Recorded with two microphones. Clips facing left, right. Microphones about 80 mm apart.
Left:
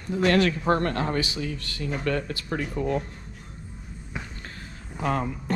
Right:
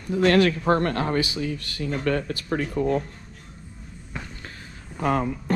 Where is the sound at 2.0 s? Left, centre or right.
Right.